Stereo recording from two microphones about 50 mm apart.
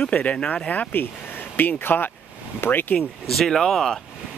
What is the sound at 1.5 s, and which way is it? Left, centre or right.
Speech, left.